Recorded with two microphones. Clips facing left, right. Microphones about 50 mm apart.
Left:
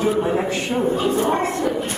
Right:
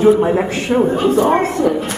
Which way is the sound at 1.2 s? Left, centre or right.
Right.